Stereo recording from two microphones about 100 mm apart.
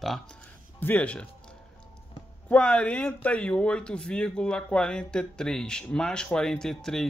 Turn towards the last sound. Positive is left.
turn(degrees=5)  # may be behind; listen again after turning